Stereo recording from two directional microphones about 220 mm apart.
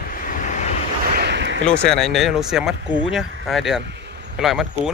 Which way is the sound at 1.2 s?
50° right (ahead or behind).